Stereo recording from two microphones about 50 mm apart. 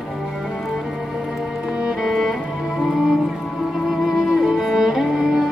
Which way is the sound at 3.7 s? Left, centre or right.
Centre.